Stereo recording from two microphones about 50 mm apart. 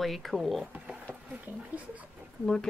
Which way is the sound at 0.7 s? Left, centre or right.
Right.